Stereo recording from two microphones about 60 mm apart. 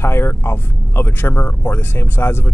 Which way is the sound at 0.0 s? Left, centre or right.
Left.